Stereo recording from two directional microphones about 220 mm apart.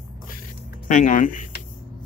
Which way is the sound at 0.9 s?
35° left (ahead or behind).